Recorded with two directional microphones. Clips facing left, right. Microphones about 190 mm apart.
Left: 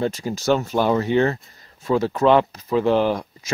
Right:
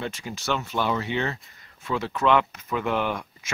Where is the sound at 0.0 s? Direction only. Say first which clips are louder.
Left 9 dB; 40° left (ahead or behind).